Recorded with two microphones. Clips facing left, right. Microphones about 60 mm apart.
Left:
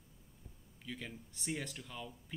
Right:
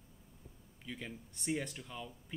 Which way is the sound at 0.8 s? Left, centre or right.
Centre.